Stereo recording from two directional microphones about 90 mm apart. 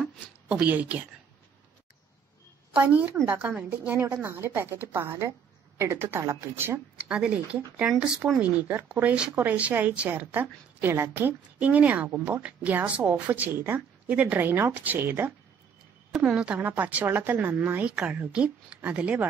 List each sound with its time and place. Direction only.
0.5 s speech: 15° right (ahead or behind)
2.7 s a woman's voice: 15° right (ahead or behind); by 6.8 s 30° right (ahead or behind)
7.1 s a woman's voice: 10° right (ahead or behind)
16.1 s speech: 5° right (ahead or behind)
16.5 s a woman's voice: 20° right (ahead or behind)